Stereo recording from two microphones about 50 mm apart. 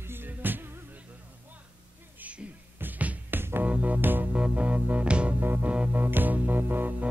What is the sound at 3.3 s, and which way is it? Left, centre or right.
Music, right.